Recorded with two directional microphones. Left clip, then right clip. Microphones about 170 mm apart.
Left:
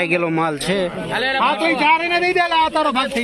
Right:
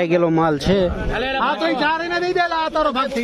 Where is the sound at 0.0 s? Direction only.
20° right (ahead or behind).